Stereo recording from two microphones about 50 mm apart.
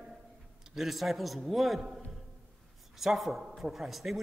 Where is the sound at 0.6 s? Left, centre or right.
Centre.